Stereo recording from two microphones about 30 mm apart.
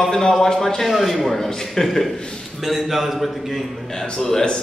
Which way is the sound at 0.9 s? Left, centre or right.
Centre.